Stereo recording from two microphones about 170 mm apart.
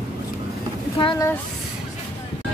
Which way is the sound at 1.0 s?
30° left (ahead or behind).